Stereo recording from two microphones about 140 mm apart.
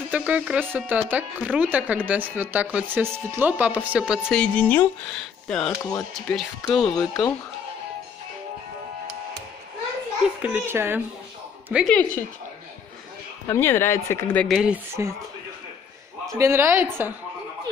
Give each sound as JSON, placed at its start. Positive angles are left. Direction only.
{"t": 0.1, "sound": "speech", "side_deg": -10}
{"t": 4.4, "sound": "speech", "side_deg": 10}
{"t": 5.7, "sound": "speech", "side_deg": 25}
{"t": 6.1, "sound": "speech", "side_deg": 0}
{"t": 10.4, "sound": "speech", "side_deg": -15}
{"t": 11.9, "sound": "speech", "side_deg": 10}
{"t": 13.5, "sound": "speech", "side_deg": 15}
{"t": 14.5, "sound": "speech", "side_deg": -5}
{"t": 15.0, "sound": "speech", "side_deg": -20}
{"t": 16.3, "sound": "speech", "side_deg": -15}